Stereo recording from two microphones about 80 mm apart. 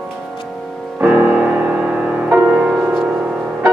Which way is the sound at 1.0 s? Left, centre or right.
Centre.